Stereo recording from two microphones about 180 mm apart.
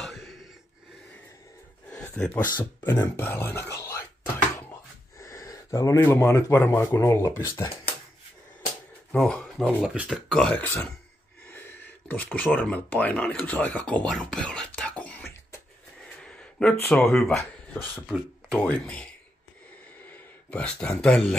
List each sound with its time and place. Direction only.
0.0 s gasp: centre (ahead or behind)
1.9 s a sound: 5° left (ahead or behind)
2.6 s speech: 10° left (ahead or behind)
5.2 s speech: 15° left (ahead or behind)
9.1 s speech: 5° left (ahead or behind)
12.1 s speech: 10° left (ahead or behind)
16.2 s a sound: 5° left (ahead or behind)
16.8 s speech: 5° left (ahead or behind)
20.5 s speech: 5° left (ahead or behind)